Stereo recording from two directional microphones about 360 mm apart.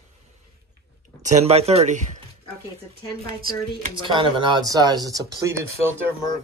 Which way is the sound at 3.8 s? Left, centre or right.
Centre.